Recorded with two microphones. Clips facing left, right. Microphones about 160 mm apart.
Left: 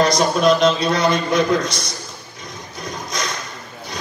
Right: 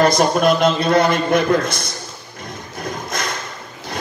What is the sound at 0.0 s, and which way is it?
A man's voice, 55° right (ahead or behind).